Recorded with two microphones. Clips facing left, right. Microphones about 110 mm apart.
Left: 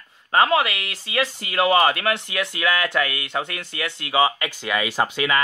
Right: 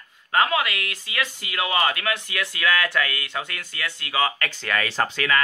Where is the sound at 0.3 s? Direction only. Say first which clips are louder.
Left 3 dB; 25° left (ahead or behind).